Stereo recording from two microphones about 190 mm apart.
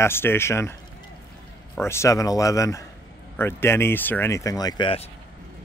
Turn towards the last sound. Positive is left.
turn(degrees=20)  # may be behind; listen again after turning